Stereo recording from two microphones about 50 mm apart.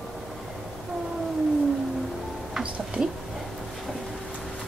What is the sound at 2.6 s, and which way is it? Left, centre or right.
Mouse, right.